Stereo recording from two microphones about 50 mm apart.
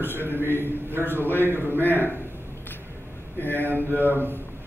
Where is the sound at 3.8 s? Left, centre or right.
Right.